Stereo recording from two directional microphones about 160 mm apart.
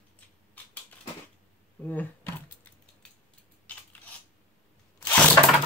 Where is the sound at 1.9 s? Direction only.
10° left (ahead or behind).